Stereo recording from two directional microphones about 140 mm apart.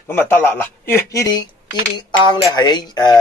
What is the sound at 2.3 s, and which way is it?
Speech, 30° left (ahead or behind).